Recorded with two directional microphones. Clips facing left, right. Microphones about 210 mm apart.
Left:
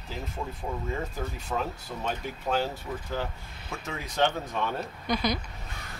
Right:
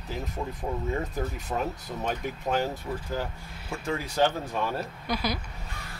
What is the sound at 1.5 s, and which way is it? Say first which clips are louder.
Speech: even; 20° right (ahead or behind).